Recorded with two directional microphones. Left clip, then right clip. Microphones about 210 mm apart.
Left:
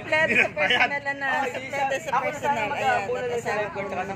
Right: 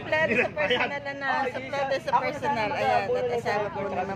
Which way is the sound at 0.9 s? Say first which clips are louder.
Left 3 dB; 20° left (ahead or behind).